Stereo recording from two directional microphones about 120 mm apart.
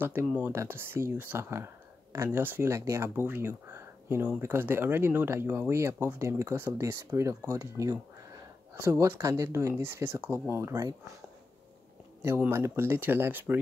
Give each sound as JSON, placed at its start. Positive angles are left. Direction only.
{"t": 0.0, "sound": "speech", "side_deg": -15}
{"t": 12.2, "sound": "speech", "side_deg": -20}